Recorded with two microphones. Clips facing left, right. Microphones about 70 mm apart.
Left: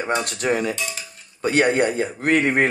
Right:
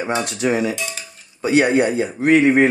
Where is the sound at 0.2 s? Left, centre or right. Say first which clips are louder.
Right 3 dB; left.